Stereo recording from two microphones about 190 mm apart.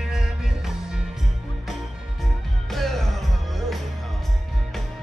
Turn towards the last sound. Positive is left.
turn(degrees=0)  # may be behind; listen again after turning